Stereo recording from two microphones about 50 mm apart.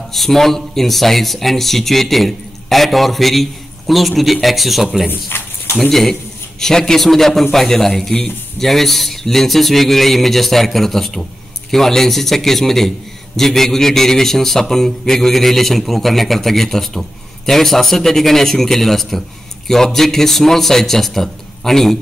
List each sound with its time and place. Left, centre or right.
0.1 s speech: centre
5.3 s speech: left
5.8 s a man's voice: centre